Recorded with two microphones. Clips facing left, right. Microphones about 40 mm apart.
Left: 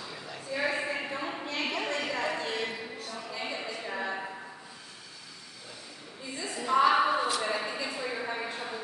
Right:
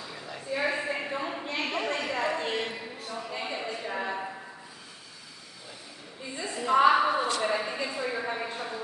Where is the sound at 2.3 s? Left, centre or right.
Right.